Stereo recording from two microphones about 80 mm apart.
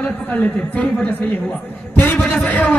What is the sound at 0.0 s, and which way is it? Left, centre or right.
A man's voice, centre.